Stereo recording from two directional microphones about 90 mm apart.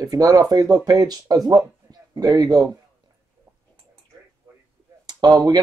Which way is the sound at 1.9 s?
45° right (ahead or behind).